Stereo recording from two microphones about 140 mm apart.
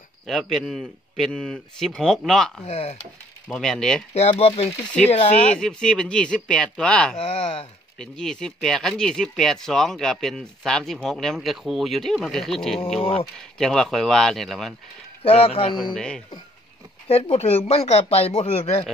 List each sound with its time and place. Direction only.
0.3 s speech: centre (ahead or behind)
2.6 s speech: 45° left (ahead or behind)
3.4 s speech: 5° left (ahead or behind)
4.1 s speech: 45° left (ahead or behind)
5.1 s speech: 55° left (ahead or behind)
5.6 s speech: 5° left (ahead or behind)
15.2 s speech: 45° left (ahead or behind)
15.7 s speech: centre (ahead or behind)
17.1 s speech: 45° left (ahead or behind)